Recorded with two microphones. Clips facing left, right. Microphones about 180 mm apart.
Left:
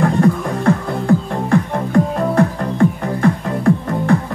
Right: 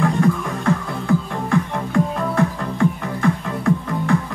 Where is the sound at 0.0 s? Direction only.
40° left (ahead or behind).